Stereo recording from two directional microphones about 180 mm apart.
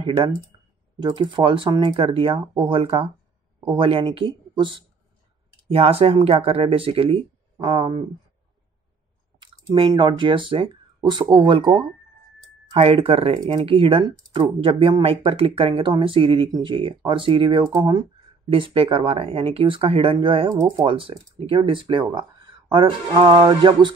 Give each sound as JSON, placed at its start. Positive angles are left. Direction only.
{"t": 0.0, "sound": "speech", "side_deg": -30}
{"t": 9.4, "sound": "speech", "side_deg": -25}